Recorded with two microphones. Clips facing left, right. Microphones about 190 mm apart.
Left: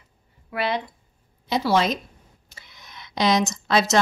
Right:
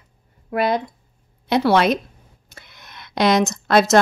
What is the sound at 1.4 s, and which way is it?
Speech, 65° right (ahead or behind).